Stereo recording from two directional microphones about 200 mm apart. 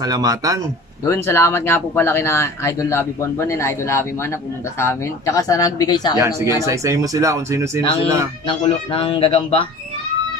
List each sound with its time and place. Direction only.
0.0 s speech: 20° right (ahead or behind)
1.0 s speech: 15° left (ahead or behind)
6.1 s speech: 15° right (ahead or behind)
8.5 s speech: 25° left (ahead or behind)